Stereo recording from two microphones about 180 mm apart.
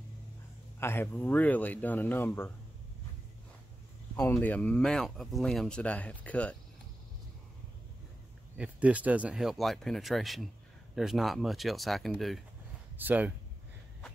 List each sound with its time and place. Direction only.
0.7 s speech: 15° left (ahead or behind)
4.2 s speech: 10° left (ahead or behind)
8.5 s speech: 5° right (ahead or behind)